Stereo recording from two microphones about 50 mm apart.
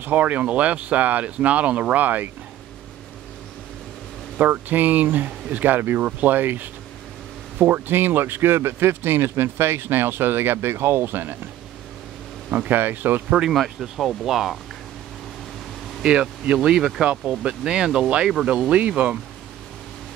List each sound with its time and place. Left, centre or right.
0.0 s speech: right
4.4 s speech: right
12.4 s speech: right
13.5 s speech: centre
16.0 s speech: centre